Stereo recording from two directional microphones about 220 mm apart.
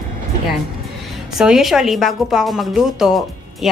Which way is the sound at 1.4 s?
Centre (ahead or behind).